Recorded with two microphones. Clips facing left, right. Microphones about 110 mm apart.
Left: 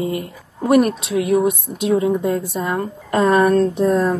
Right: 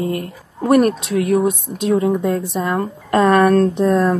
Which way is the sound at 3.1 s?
50° right (ahead or behind).